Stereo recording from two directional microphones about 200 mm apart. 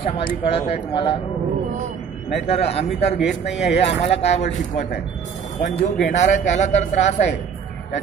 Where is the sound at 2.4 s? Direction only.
30° left (ahead or behind).